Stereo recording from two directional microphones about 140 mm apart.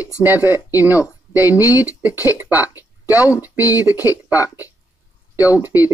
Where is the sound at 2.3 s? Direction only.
15° right (ahead or behind).